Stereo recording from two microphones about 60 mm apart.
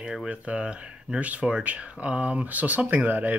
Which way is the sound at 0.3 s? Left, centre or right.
Centre.